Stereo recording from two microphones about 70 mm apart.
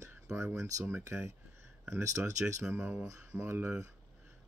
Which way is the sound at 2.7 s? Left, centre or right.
Right.